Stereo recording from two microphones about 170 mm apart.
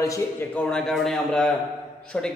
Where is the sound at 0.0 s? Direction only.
20° left (ahead or behind).